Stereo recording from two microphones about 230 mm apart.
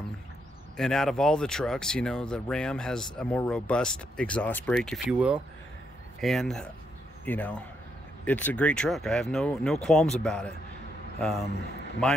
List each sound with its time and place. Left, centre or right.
0.7 s a man's voice: centre